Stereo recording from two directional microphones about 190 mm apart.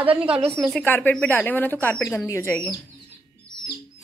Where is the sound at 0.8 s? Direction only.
10° left (ahead or behind).